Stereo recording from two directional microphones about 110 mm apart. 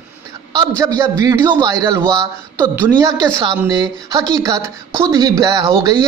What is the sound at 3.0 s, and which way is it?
Speech, 40° right (ahead or behind).